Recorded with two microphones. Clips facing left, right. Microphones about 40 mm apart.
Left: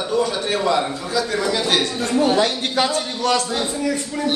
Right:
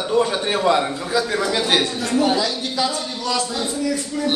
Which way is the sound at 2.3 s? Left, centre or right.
Left.